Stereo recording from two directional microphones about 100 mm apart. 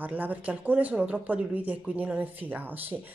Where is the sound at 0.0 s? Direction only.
15° right (ahead or behind).